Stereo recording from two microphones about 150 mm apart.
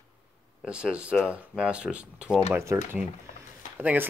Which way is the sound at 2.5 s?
15° right (ahead or behind).